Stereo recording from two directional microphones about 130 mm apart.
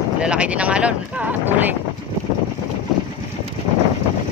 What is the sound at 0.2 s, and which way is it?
Speech, 10° right (ahead or behind).